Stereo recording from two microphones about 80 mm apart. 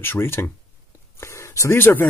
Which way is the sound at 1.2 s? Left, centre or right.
Left.